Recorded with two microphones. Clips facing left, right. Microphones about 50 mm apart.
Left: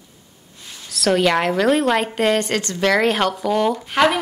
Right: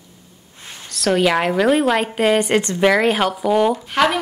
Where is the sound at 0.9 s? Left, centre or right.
Centre.